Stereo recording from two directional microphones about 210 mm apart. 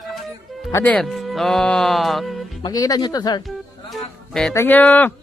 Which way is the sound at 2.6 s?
20° left (ahead or behind).